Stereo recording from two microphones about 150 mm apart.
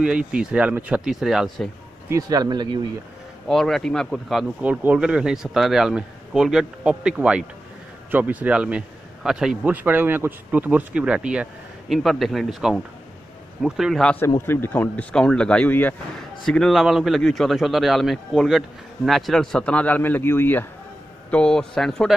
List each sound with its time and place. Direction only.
0.0 s speech: 5° right (ahead or behind)
2.0 s speech: 25° right (ahead or behind)
3.4 s speech: centre (ahead or behind)
14.4 s speech: 15° left (ahead or behind)